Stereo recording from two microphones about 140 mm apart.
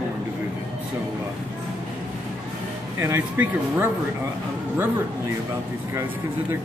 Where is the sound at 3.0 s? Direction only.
15° right (ahead or behind).